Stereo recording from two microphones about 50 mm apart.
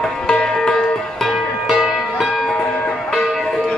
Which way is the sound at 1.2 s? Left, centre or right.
Centre.